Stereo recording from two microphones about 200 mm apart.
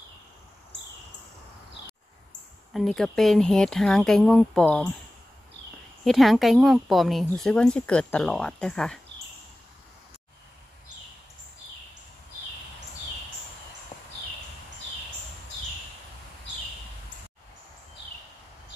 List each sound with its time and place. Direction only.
2.7 s speech: centre (ahead or behind)
6.0 s speech: centre (ahead or behind)